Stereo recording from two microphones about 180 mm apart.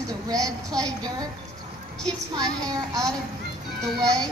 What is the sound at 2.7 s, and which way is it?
Speech, 20° right (ahead or behind).